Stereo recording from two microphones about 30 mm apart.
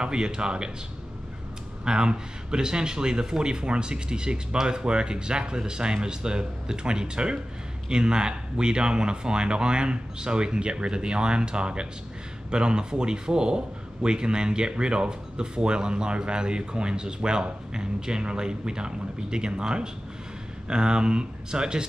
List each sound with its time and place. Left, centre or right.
0.0 s speech: right
1.9 s speech: right